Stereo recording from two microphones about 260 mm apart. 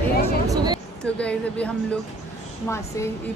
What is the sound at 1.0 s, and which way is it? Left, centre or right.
A woman's voice, centre.